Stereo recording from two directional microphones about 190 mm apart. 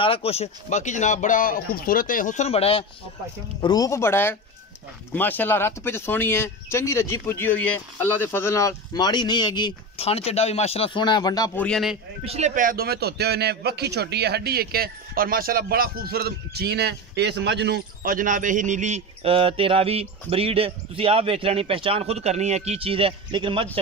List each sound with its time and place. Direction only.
0.0 s speech: 30° left (ahead or behind)
3.6 s speech: 20° left (ahead or behind)
11.6 s speech: centre (ahead or behind)
12.3 s a man's voice: 35° right (ahead or behind)